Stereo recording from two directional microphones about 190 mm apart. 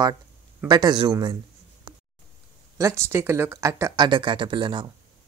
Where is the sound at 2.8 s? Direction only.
15° right (ahead or behind).